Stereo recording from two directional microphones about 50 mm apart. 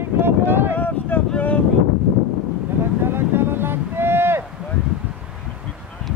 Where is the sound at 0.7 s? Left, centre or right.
Left.